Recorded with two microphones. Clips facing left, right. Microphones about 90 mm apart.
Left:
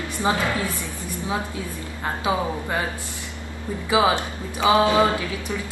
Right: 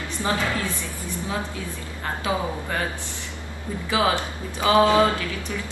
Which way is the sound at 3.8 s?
20° left (ahead or behind).